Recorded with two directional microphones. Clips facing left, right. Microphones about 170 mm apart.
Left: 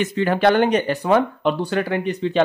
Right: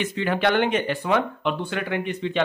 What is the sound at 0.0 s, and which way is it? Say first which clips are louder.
Speech: left 5 dB; 40° left (ahead or behind).